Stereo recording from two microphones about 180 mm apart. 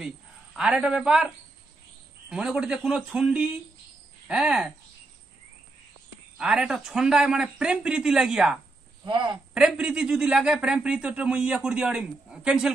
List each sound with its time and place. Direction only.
0.6 s speech: 5° right (ahead or behind)
6.3 s speech: 5° right (ahead or behind)
9.0 s a woman's voice: 25° right (ahead or behind)
9.5 s speech: 5° right (ahead or behind)